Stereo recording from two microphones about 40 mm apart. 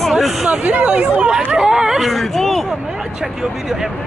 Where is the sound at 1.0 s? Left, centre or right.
Right.